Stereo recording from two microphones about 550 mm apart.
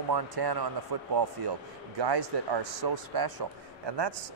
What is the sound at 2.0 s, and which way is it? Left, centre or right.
A man's voice, right.